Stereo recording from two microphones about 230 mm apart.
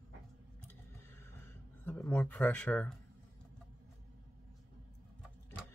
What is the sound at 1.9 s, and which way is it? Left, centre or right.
Speech, centre.